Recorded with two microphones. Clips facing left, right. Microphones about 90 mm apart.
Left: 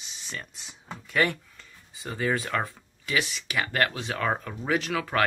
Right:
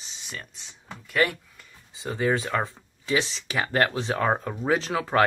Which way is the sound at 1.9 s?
20° right (ahead or behind).